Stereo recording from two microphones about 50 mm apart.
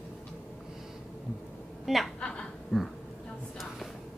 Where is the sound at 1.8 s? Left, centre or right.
Centre.